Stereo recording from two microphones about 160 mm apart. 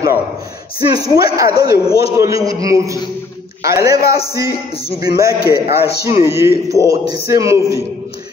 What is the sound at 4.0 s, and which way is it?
Speech, 70° left (ahead or behind).